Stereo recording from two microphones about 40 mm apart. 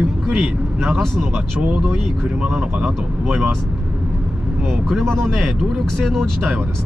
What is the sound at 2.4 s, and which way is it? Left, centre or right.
Speech, centre.